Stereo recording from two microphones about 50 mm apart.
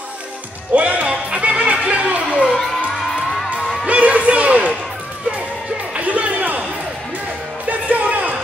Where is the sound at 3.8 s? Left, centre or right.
Right.